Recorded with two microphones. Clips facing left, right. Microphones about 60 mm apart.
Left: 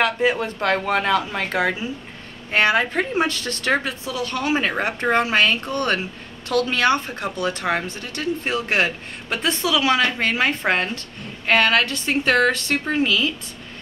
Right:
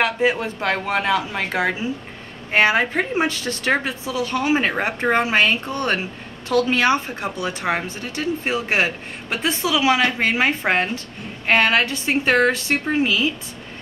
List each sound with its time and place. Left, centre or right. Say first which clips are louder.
0.0 s speech: even; centre